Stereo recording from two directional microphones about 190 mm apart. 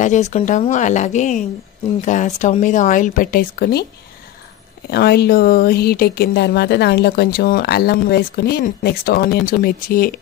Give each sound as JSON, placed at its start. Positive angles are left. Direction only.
{"t": 0.0, "sound": "speech", "side_deg": 40}
{"t": 4.8, "sound": "speech", "side_deg": 55}